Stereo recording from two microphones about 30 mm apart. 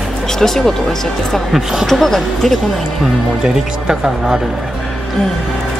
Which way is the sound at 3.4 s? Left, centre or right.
Centre.